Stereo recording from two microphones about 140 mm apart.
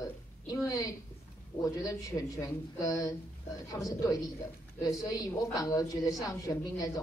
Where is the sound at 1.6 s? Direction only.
25° left (ahead or behind).